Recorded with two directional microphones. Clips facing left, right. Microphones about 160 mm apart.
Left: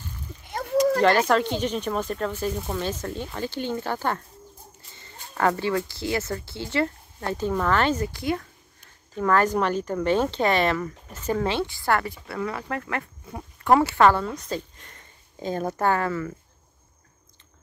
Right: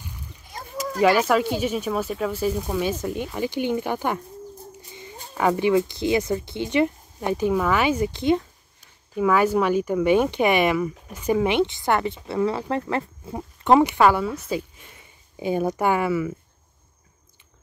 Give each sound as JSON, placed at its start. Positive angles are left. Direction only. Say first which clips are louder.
{"t": 0.5, "sound": "a sound", "louder": "left 8 dB", "side_deg": 65}
{"t": 1.0, "sound": "speech", "louder": "right 1 dB", "side_deg": -10}
{"t": 8.1, "sound": "speech", "louder": "right 6 dB", "side_deg": -20}
{"t": 9.1, "sound": "speech", "louder": "right 2 dB", "side_deg": -10}